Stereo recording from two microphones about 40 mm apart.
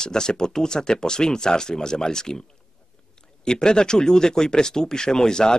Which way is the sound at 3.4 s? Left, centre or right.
Left.